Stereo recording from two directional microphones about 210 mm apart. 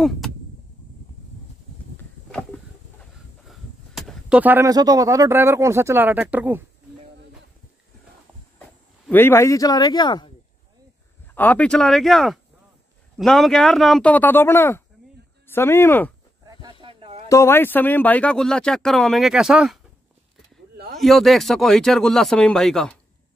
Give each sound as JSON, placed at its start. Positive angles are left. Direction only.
{"t": 0.0, "sound": "a sound", "side_deg": 0}
{"t": 3.4, "sound": "speech", "side_deg": 0}
{"t": 9.0, "sound": "speech", "side_deg": 10}
{"t": 11.3, "sound": "speech", "side_deg": 5}
{"t": 16.8, "sound": "a sound", "side_deg": -25}
{"t": 17.3, "sound": "speech", "side_deg": 10}
{"t": 21.0, "sound": "speech", "side_deg": 0}